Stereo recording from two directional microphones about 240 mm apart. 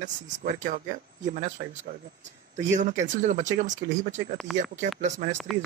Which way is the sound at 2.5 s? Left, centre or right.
Right.